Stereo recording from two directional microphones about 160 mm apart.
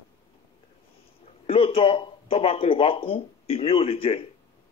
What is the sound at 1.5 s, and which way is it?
Speech, 35° left (ahead or behind).